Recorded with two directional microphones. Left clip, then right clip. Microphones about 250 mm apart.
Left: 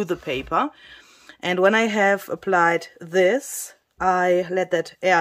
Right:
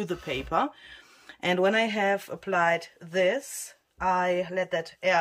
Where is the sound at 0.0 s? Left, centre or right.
Centre.